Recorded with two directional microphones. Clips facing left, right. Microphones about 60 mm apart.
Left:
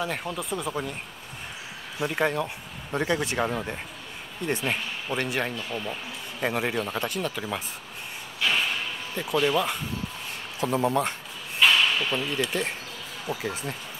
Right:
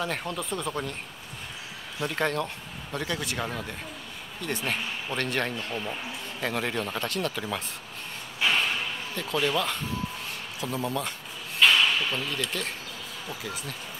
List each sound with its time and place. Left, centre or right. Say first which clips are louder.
0.0 s speech: left 1 dB; centre
2.0 s speech: left 2 dB; centre
2.9 s speech: left 5 dB; left
5.1 s speech: left 1 dB; centre
6.4 s speech: left 3 dB; centre
8.4 s a sound: even; right
9.1 s speech: left 3 dB; centre
10.6 s speech: left 6 dB; left
11.6 s a sound: even; centre
12.1 s speech: left 3 dB; centre
13.3 s speech: left 6 dB; left